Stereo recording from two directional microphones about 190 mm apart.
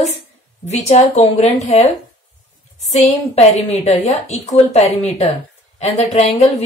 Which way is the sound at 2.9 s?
35° left (ahead or behind).